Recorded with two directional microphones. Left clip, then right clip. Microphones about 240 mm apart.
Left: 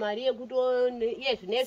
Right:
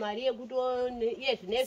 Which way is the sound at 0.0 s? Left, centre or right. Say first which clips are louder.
Left 3 dB; centre.